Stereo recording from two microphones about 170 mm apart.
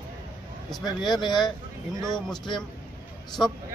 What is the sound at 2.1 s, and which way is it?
Speech, 5° left (ahead or behind).